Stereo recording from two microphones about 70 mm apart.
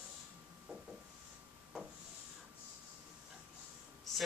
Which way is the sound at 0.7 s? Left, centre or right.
Centre.